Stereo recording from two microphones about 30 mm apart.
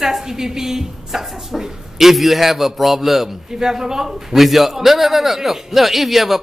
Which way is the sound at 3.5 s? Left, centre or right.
Centre.